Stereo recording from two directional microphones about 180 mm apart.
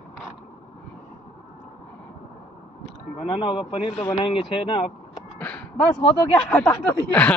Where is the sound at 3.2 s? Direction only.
25° left (ahead or behind).